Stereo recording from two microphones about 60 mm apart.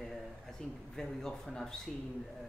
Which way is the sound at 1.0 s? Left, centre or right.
Centre.